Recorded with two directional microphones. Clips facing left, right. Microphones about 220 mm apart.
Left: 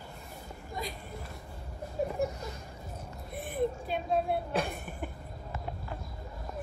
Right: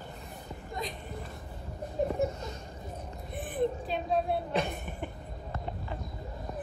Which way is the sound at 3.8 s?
5° left (ahead or behind).